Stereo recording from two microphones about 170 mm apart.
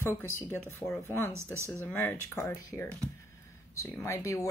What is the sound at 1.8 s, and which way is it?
Speech, 10° left (ahead or behind).